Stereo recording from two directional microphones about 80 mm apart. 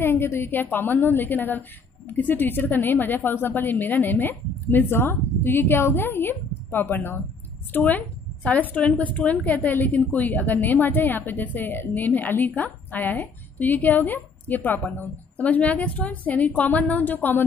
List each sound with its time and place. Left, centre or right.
0.0 s a woman's voice: left